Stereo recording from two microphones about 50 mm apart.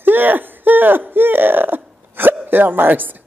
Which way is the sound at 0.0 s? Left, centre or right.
Right.